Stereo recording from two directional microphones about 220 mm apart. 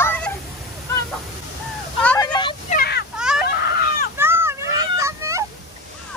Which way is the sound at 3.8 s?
40° left (ahead or behind).